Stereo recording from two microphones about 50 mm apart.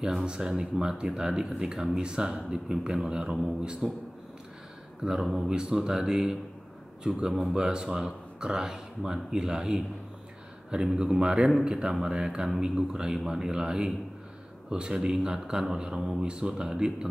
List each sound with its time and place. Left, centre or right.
0.0 s speech: centre
5.0 s speech: centre
11.0 s speech: centre